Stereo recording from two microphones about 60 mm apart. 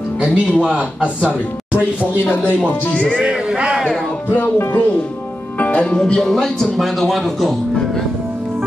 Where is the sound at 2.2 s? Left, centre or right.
Left.